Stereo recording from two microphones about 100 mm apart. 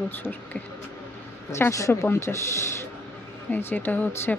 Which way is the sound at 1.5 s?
30° left (ahead or behind).